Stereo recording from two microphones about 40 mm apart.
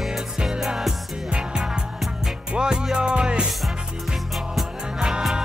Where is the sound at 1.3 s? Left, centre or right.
Right.